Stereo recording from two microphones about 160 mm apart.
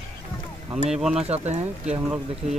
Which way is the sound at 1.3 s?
40° right (ahead or behind).